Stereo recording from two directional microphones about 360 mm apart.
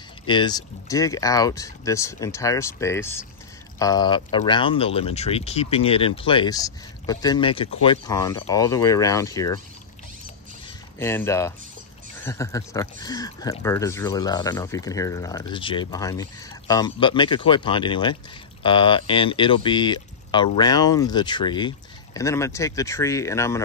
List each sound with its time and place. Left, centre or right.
0.3 s speech: centre
11.0 s speech: centre